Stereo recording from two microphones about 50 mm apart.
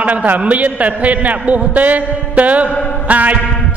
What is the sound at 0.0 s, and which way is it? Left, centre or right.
A man's voice, right.